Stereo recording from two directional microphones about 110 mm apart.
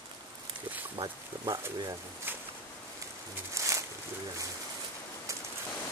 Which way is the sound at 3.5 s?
30° right (ahead or behind).